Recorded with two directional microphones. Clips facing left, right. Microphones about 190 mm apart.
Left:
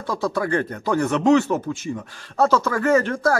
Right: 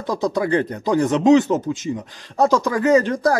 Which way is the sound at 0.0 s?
20° right (ahead or behind).